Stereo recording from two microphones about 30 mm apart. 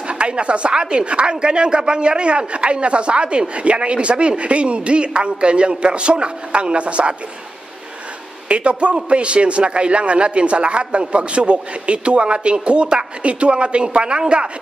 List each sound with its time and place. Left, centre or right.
0.1 s a man's voice: right
8.5 s a man's voice: right